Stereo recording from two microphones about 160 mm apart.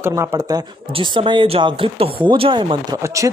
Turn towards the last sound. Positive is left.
turn(degrees=-20)  # may be behind; listen again after turning